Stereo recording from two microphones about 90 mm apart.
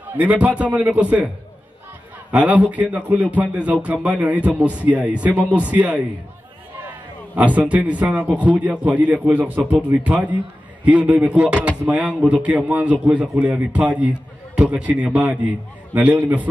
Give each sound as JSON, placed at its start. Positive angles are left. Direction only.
{"t": 0.1, "sound": "a man's voice", "side_deg": -15}
{"t": 2.3, "sound": "a man's voice", "side_deg": -15}
{"t": 7.5, "sound": "a man's voice", "side_deg": -15}